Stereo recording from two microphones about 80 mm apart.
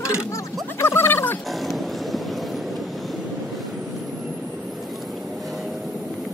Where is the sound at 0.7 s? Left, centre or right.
Left.